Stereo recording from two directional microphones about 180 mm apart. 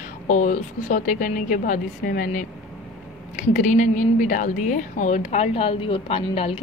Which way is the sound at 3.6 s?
45° left (ahead or behind).